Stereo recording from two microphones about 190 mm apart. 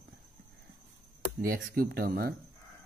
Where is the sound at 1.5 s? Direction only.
55° right (ahead or behind).